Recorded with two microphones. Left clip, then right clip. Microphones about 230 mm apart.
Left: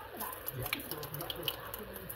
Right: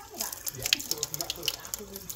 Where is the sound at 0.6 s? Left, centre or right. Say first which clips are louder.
Right 12 dB; right.